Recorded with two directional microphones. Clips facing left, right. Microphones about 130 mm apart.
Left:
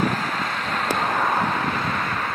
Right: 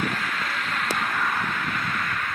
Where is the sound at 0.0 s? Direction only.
35° left (ahead or behind).